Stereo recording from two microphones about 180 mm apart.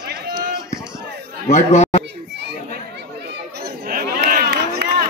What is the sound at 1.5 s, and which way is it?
Speech, 40° left (ahead or behind).